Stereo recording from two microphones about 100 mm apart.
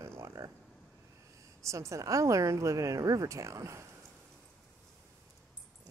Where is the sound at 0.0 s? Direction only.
30° right (ahead or behind).